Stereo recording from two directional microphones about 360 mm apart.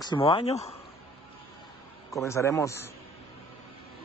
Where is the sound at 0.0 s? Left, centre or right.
Centre.